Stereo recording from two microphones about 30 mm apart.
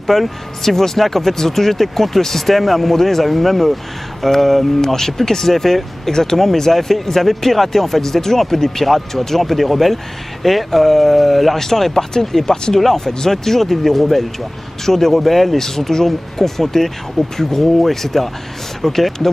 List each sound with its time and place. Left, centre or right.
0.0 s speech: centre